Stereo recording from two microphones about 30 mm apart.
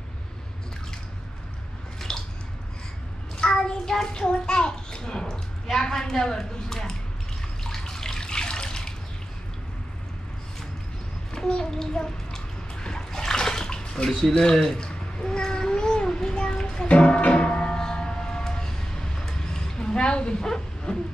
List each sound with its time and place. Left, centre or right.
2.0 s a sound: centre
3.3 s child singing: left
4.1 s bathtub: left
5.7 s a woman's voice: centre
7.6 s water: centre
11.3 s a sound: left
11.8 s a child's voice: left
13.1 s bathtub: centre
14.5 s a woman's voice: centre
14.9 s a sound: left
16.8 s music: left
17.7 s train: left
20.4 s a sound: left